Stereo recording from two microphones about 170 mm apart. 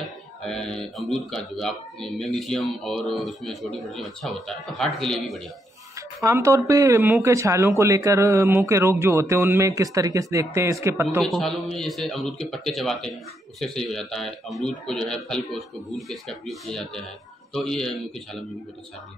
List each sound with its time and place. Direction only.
0.4 s speech: 5° left (ahead or behind)
6.2 s speech: 15° right (ahead or behind)
11.1 s speech: 5° left (ahead or behind)